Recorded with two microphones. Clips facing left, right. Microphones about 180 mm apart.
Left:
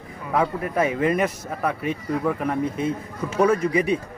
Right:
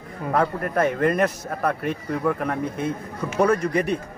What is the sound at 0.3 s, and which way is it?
Speech, 5° left (ahead or behind).